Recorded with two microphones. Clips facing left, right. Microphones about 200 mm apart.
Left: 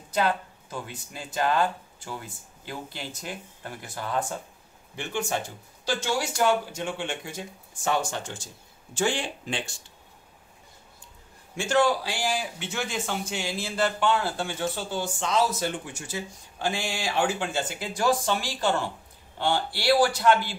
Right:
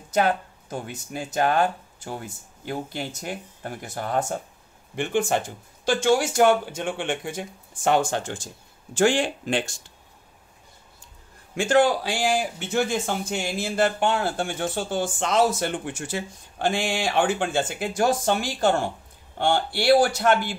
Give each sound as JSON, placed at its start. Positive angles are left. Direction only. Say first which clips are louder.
{"t": 0.1, "sound": "speech", "louder": "right 4 dB", "side_deg": -45}
{"t": 8.9, "sound": "speech", "louder": "right 7 dB", "side_deg": -90}
{"t": 9.5, "sound": "speech", "louder": "right 7 dB", "side_deg": -45}
{"t": 11.6, "sound": "speech", "louder": "right 4 dB", "side_deg": -55}